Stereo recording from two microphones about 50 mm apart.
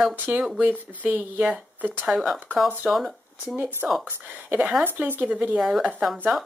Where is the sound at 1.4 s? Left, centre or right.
Centre.